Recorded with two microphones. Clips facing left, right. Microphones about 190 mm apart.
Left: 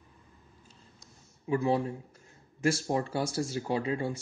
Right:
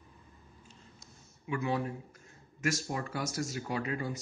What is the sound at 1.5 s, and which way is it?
Speech, 30° left (ahead or behind).